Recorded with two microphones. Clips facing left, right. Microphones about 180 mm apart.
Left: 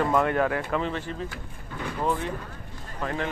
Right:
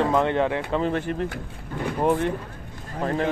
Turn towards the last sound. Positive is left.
turn(degrees=-35)  # may be behind; listen again after turning